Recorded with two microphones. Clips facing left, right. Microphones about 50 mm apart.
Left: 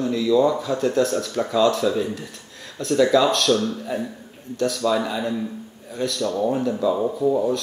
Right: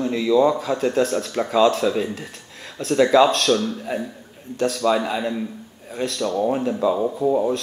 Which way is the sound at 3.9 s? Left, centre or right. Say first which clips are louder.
Even; centre.